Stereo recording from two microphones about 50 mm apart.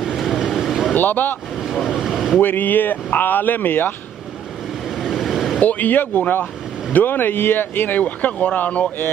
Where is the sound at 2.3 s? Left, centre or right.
Left.